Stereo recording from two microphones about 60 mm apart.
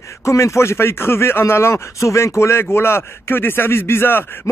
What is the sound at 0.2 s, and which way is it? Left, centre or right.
Speech, left.